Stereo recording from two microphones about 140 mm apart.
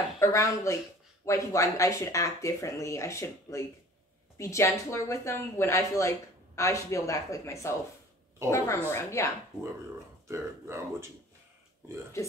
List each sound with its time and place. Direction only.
0.2 s speech: 20° left (ahead or behind)
10.2 s speech: 20° right (ahead or behind)